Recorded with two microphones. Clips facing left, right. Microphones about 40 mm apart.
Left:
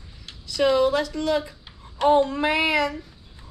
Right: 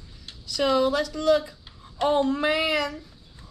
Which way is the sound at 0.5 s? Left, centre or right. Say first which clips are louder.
Left 2 dB; centre.